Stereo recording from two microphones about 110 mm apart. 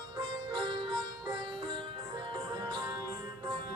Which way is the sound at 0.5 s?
45° right (ahead or behind).